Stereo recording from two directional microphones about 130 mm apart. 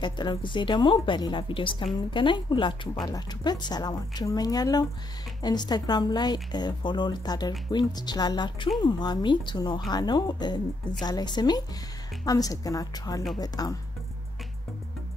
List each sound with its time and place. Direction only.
0.0 s a woman's voice: 35° left (ahead or behind)